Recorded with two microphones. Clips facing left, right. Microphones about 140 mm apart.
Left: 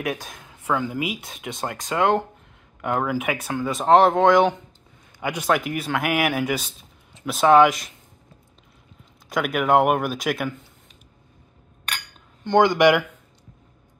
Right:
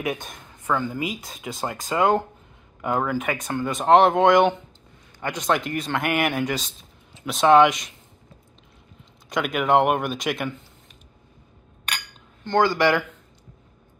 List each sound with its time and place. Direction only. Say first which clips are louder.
0.0 s speech: even; centre (ahead or behind)
9.3 s speech: left 1 dB; 5° left (ahead or behind)
12.4 s speech: left 3 dB; 20° left (ahead or behind)